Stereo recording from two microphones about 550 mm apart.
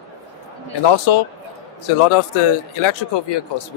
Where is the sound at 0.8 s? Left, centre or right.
Left.